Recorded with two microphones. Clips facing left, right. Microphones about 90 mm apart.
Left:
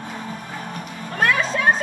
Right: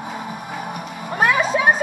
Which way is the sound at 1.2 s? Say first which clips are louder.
Right 2 dB; 10° right (ahead or behind).